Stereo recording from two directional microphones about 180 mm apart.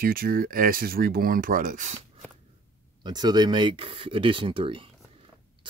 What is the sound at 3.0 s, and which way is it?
Speech, 25° right (ahead or behind).